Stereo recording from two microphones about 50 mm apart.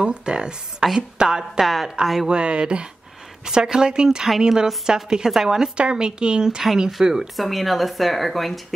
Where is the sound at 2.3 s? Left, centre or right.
Centre.